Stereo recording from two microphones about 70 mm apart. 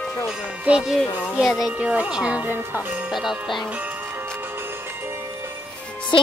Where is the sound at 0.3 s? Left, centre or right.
Centre.